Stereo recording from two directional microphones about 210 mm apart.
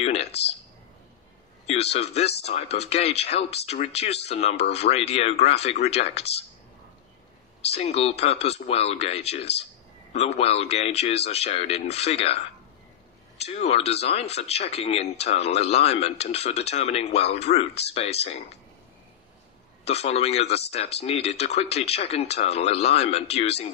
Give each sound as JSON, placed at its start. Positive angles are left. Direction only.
{"t": 0.0, "sound": "a sound", "side_deg": 30}
{"t": 1.7, "sound": "speech", "side_deg": 30}
{"t": 7.6, "sound": "speech", "side_deg": 30}
{"t": 13.4, "sound": "speech", "side_deg": 30}
{"t": 19.8, "sound": "speech", "side_deg": 30}